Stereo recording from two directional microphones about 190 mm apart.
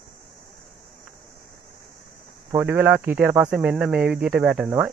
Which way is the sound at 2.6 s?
10° right (ahead or behind).